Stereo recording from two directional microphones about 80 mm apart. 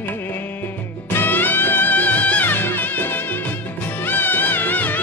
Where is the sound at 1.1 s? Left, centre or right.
Left.